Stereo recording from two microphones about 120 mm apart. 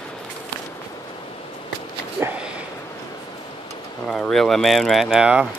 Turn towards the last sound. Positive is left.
turn(degrees=-5)  # may be behind; listen again after turning